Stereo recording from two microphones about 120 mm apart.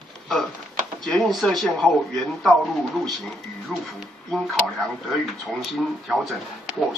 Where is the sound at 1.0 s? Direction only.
5° left (ahead or behind).